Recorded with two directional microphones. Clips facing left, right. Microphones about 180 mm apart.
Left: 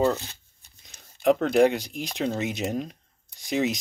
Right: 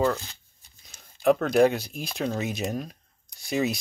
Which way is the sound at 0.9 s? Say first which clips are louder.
Even; 20° left (ahead or behind).